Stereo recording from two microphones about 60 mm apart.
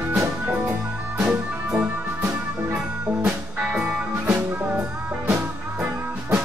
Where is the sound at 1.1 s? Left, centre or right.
Centre.